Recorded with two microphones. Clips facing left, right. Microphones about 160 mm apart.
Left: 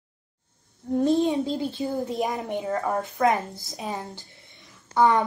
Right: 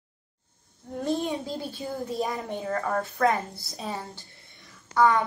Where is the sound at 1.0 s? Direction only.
25° left (ahead or behind).